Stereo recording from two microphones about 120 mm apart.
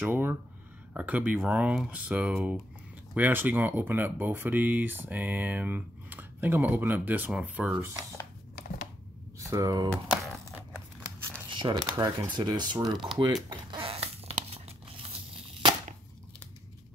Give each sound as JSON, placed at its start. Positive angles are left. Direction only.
{"t": 0.0, "sound": "speech", "side_deg": -15}
{"t": 9.4, "sound": "speech", "side_deg": -25}
{"t": 10.0, "sound": "a sound", "side_deg": -5}
{"t": 11.5, "sound": "a sound", "side_deg": -40}
{"t": 11.9, "sound": "speech", "side_deg": -35}
{"t": 13.2, "sound": "tearing", "side_deg": -35}